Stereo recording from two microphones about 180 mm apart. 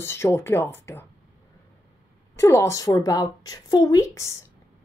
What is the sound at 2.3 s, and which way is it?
Speech, 15° left (ahead or behind).